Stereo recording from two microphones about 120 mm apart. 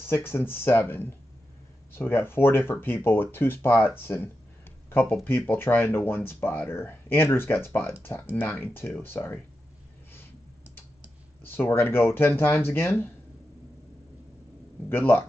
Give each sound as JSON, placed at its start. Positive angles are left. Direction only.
{"t": 0.0, "sound": "speech", "side_deg": 20}
{"t": 11.4, "sound": "speech", "side_deg": 20}
{"t": 14.9, "sound": "speech", "side_deg": 15}